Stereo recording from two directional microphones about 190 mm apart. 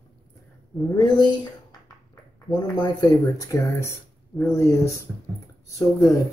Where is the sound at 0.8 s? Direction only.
20° left (ahead or behind).